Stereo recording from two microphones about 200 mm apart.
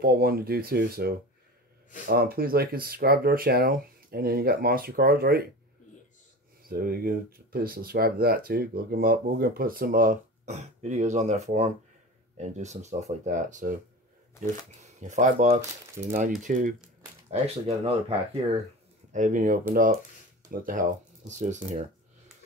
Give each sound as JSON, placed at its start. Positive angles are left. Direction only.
{"t": 0.0, "sound": "speech", "side_deg": -50}
{"t": 6.7, "sound": "speech", "side_deg": -50}
{"t": 14.8, "sound": "speech", "side_deg": -35}
{"t": 19.1, "sound": "speech", "side_deg": -40}